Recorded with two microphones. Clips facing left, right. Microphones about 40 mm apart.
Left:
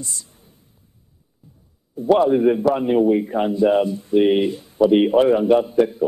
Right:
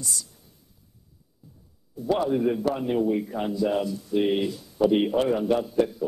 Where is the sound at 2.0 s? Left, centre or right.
Left.